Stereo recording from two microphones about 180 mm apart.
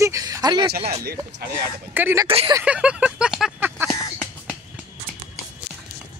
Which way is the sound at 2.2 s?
30° right (ahead or behind).